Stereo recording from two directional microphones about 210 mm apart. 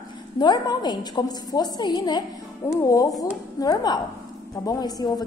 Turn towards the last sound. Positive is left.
turn(degrees=20)  # may be behind; listen again after turning